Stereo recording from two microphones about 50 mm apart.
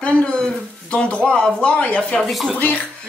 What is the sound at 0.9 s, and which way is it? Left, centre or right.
Speech, left.